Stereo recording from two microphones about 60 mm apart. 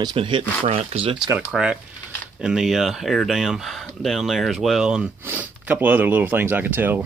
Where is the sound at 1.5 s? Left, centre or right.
Centre.